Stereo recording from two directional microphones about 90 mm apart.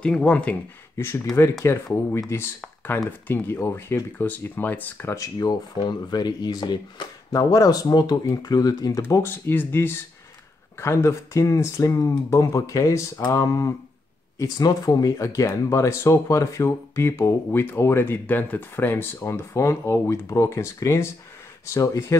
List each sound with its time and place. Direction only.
0.0 s speech: 10° left (ahead or behind)
0.9 s speech: 25° left (ahead or behind)
5.1 s speech: 40° left (ahead or behind)
9.2 s speech: 25° left (ahead or behind)
19.2 s speech: 35° left (ahead or behind)